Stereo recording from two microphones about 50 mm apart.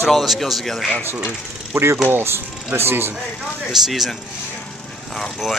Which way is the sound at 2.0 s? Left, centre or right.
Right.